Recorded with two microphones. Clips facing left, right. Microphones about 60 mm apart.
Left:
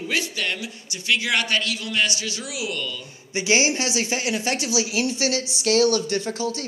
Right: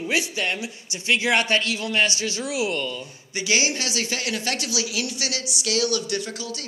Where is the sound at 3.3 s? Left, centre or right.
Left.